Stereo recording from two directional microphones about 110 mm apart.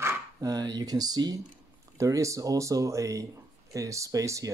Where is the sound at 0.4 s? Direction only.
35° right (ahead or behind).